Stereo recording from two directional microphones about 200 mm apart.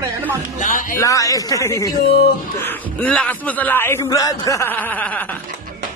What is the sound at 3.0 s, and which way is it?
A man's voice, 5° left (ahead or behind).